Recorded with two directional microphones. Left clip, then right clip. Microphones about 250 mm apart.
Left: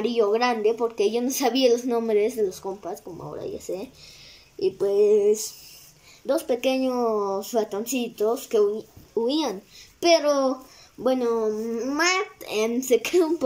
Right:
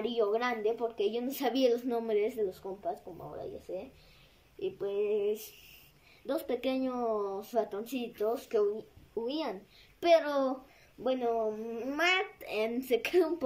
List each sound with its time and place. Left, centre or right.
0.0 s a woman's voice: centre
4.6 s female singing: left
6.2 s a woman's voice: centre
11.0 s female singing: centre
11.7 s a woman's voice: centre